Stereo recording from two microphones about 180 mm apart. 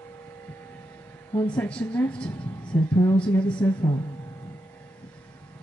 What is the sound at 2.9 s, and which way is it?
Speech, 25° left (ahead or behind).